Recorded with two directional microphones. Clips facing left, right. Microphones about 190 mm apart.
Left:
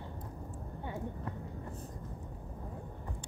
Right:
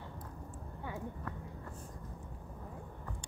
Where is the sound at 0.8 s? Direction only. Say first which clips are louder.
Left 2 dB; 25° left (ahead or behind).